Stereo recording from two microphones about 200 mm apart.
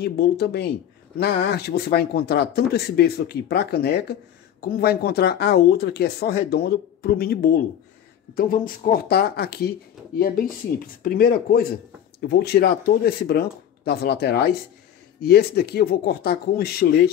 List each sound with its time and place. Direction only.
0.0 s speech: 55° left (ahead or behind)